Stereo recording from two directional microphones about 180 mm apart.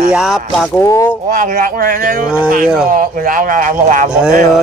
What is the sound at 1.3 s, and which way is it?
Speech, 45° right (ahead or behind).